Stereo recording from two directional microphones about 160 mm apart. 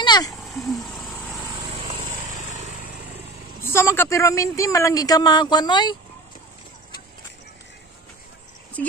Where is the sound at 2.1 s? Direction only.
50° right (ahead or behind).